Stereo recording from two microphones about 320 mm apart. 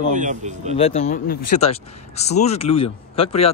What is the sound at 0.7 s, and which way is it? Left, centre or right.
Speech, centre.